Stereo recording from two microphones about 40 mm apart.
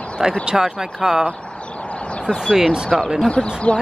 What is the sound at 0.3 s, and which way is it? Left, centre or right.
Speech, centre.